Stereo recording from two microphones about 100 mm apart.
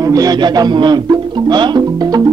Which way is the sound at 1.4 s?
45° right (ahead or behind).